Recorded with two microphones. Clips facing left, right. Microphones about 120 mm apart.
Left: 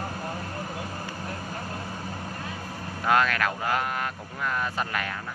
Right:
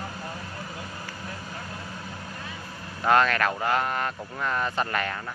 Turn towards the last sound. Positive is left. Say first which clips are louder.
# right 2 dB
turn(degrees=5)  # may be behind; listen again after turning